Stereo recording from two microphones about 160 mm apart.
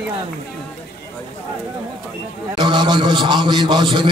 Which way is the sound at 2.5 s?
25° right (ahead or behind).